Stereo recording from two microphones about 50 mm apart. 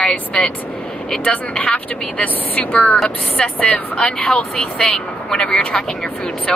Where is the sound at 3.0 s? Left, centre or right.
Centre.